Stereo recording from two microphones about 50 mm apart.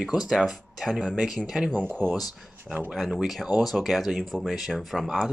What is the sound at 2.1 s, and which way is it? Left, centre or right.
Speech, centre.